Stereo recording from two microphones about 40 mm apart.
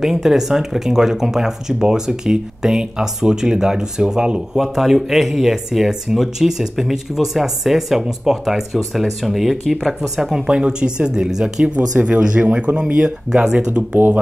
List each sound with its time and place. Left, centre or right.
0.0 s speech: centre
4.6 s speech: centre
10.4 s speech: right
11.6 s speech: right
12.5 s speech: right